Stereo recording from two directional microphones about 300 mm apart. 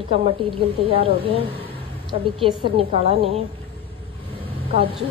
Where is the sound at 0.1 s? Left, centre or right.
Centre.